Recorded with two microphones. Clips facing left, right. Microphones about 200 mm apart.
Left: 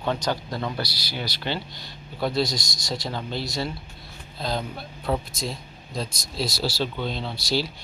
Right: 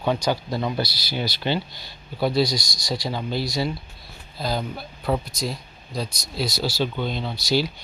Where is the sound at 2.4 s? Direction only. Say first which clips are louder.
Right 3 dB; 25° left (ahead or behind).